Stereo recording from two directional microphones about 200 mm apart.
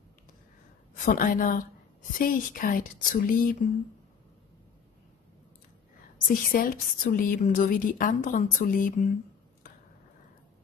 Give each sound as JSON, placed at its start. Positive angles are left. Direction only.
{"t": 0.9, "sound": "a woman's voice", "side_deg": 45}
{"t": 6.2, "sound": "a woman's voice", "side_deg": 45}